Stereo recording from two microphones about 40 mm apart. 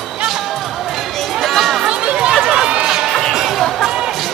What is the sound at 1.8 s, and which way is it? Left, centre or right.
Chatter, right.